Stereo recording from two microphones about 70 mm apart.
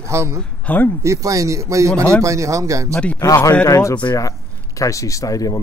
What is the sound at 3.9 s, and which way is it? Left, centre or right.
Speech, left.